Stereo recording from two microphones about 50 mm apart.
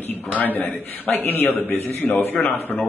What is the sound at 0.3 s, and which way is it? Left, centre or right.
A man's voice, left.